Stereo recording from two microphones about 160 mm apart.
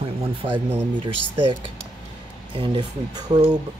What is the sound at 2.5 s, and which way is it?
Speech, 30° right (ahead or behind).